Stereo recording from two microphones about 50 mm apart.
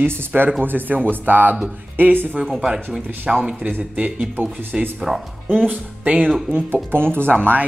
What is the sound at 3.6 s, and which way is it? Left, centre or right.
Speech, right.